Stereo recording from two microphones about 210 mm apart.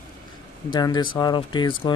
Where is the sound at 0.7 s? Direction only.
20° left (ahead or behind).